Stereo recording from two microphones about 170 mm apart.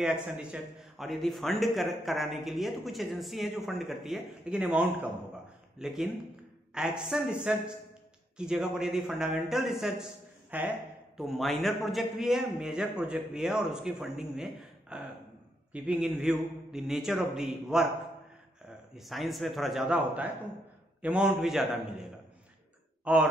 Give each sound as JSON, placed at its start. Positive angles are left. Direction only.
{"t": 0.0, "sound": "speech", "side_deg": -5}
{"t": 18.9, "sound": "speech", "side_deg": 0}
{"t": 23.1, "sound": "speech", "side_deg": -5}